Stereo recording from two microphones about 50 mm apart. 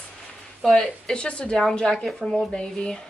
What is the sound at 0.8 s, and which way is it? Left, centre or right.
Speech, centre.